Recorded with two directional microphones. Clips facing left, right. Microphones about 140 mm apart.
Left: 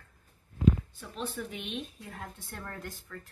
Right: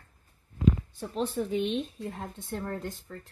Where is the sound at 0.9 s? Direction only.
35° right (ahead or behind).